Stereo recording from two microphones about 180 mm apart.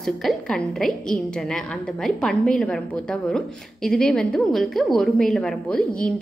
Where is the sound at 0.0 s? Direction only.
Centre (ahead or behind).